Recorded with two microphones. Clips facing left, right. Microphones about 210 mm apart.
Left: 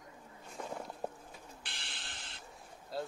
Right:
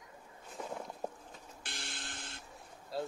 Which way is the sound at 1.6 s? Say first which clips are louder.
Right 4 dB; 45° right (ahead or behind).